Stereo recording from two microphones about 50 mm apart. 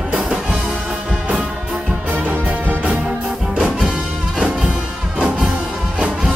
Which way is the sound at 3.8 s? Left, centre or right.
Right.